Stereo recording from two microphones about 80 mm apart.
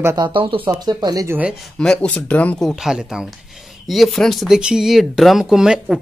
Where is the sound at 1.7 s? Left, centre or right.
Centre.